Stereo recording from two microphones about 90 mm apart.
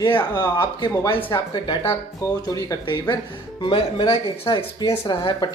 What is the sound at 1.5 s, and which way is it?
Speech, 60° left (ahead or behind).